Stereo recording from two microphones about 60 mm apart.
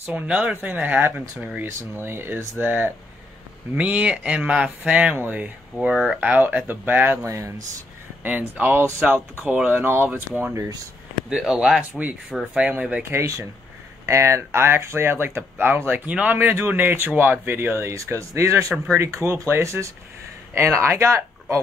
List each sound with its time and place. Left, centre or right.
0.1 s speech: right
1.7 s speech: right
5.1 s speech: right
7.2 s speech: right
8.2 s speech: right
11.2 s speech: centre
12.5 s speech: right
13.1 s speech: right
16.3 s speech: right